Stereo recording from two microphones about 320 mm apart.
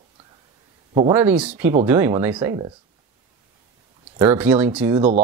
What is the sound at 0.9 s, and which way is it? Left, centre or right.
Speech, centre.